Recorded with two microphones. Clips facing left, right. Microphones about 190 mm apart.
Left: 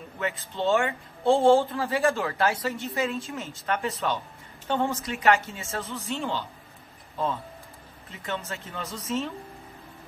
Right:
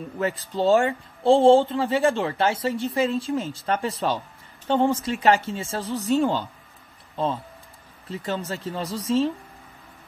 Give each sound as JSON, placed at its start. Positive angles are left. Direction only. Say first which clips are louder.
{"t": 0.2, "sound": "speech", "louder": "right 5 dB", "side_deg": -35}
{"t": 8.1, "sound": "speech", "louder": "right 5 dB", "side_deg": -35}